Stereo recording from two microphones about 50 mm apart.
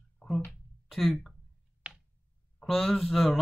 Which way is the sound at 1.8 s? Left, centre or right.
Centre.